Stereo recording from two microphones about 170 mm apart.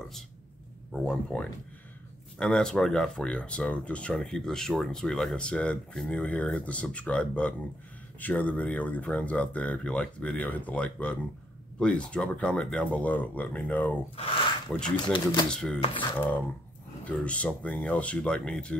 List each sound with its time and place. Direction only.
0.9 s speech: 5° left (ahead or behind)
14.1 s speech: 35° left (ahead or behind)
14.7 s speech: 5° left (ahead or behind)
15.8 s speech: 30° left (ahead or behind)
16.2 s speech: 10° left (ahead or behind)